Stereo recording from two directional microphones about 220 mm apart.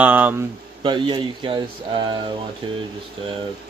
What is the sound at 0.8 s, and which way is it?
Speech, 20° right (ahead or behind).